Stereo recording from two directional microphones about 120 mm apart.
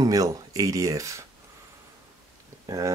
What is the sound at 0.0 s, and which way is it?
Speech, 30° right (ahead or behind).